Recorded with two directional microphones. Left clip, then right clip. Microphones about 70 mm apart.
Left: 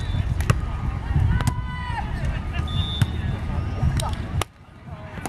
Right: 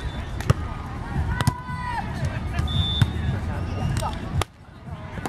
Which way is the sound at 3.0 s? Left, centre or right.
Centre.